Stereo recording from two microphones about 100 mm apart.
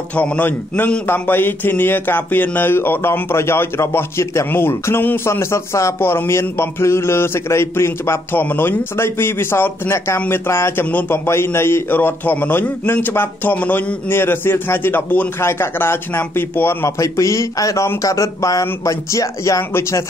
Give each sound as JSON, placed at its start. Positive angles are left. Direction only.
{"t": 0.1, "sound": "a man's voice", "side_deg": 15}